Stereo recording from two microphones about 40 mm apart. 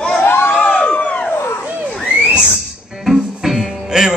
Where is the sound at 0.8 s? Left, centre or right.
Left.